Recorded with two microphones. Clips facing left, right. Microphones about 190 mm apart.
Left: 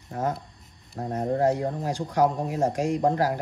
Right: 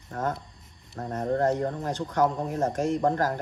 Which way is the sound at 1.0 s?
25° left (ahead or behind).